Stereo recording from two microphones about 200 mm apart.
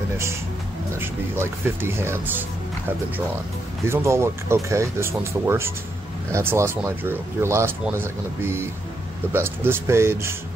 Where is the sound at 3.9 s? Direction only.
15° right (ahead or behind).